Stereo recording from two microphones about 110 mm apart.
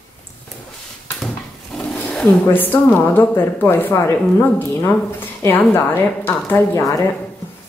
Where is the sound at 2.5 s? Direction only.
15° left (ahead or behind).